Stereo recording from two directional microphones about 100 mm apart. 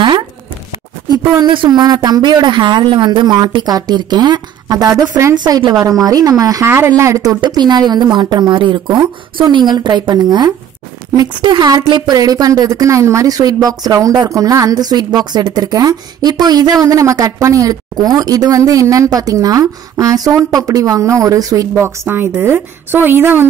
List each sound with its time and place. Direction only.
1.0 s a sound: 45° right (ahead or behind)
1.4 s speech: 55° right (ahead or behind)
1.7 s speech: 40° right (ahead or behind)
6.6 s a woman's voice: 25° right (ahead or behind)